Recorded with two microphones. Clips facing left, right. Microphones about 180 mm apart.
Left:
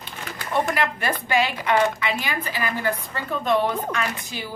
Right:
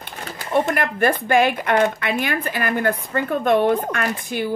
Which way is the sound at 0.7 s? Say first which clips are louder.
Right 5 dB; 50° right (ahead or behind).